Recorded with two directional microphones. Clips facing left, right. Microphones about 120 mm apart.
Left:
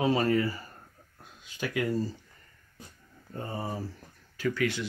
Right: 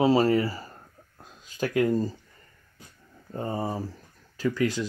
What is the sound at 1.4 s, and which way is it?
Speech, 40° right (ahead or behind).